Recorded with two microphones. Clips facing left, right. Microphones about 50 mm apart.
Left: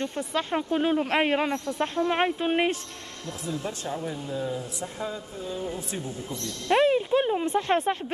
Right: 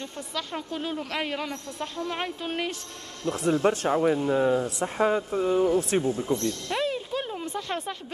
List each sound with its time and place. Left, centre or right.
0.0 s speech: left
3.3 s speech: right
6.2 s speech: right
6.7 s a sound: left